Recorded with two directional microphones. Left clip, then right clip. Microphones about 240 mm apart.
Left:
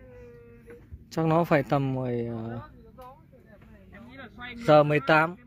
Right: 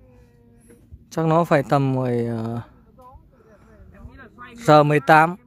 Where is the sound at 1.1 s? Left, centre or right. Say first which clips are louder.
Right 5 dB; centre.